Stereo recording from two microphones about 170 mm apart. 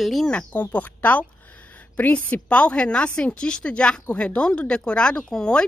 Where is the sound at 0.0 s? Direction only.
Centre (ahead or behind).